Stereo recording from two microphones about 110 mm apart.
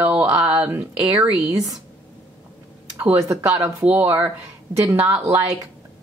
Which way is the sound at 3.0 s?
25° right (ahead or behind).